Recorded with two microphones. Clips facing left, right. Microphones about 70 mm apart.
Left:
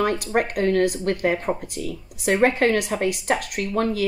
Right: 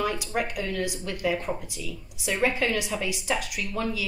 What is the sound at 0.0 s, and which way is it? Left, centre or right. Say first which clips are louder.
Speech: left 6 dB; left.